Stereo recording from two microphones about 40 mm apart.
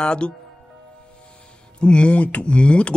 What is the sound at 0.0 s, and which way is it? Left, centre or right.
Speech, left.